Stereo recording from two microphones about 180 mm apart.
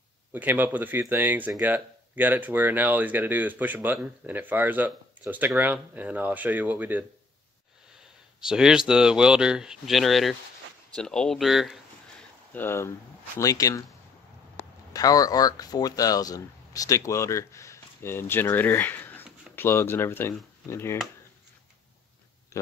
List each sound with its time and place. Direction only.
0.3 s speech: 10° right (ahead or behind)
8.4 s speech: 5° right (ahead or behind)
12.5 s speech: 15° left (ahead or behind)
22.5 s a sound: 15° left (ahead or behind)